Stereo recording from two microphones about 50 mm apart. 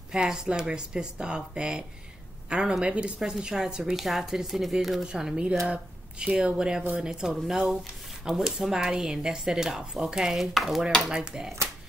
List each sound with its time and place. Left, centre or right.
0.1 s speech: centre
3.2 s speech: centre
5.0 s speech: centre
11.0 s speech: centre